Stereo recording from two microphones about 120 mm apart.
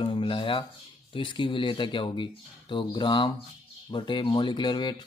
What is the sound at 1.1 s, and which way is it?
Speech, 45° left (ahead or behind).